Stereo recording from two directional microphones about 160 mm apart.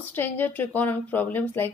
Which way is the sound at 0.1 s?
10° left (ahead or behind).